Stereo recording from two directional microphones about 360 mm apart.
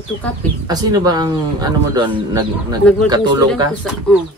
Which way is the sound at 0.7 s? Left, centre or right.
Centre.